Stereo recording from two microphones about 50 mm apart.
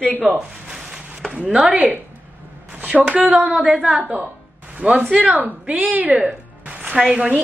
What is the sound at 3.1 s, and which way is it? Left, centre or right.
A woman's voice, right.